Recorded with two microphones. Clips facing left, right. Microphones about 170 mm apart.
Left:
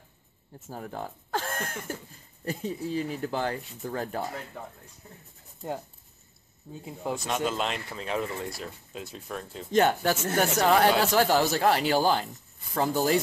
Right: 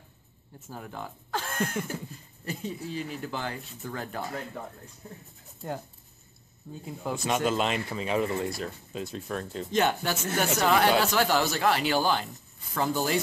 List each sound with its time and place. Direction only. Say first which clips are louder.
0.7 s speech: left 3 dB; 40° left (ahead or behind)
7.1 s speech: right 2 dB; 5° right (ahead or behind)
9.7 s speech: left 4 dB; 45° left (ahead or behind)